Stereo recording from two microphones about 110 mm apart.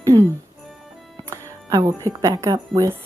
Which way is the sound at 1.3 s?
35° right (ahead or behind).